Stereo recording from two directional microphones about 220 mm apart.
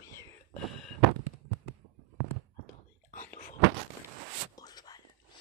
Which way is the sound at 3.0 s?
35° left (ahead or behind).